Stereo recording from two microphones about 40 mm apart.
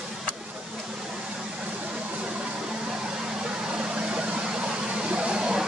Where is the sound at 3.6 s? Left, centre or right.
Right.